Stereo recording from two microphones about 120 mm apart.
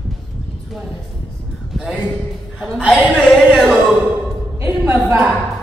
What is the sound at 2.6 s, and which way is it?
Chuckle, 5° right (ahead or behind).